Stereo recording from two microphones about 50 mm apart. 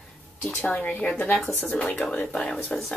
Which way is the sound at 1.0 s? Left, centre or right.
Left.